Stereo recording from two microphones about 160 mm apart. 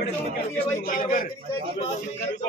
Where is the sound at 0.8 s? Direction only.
55° left (ahead or behind).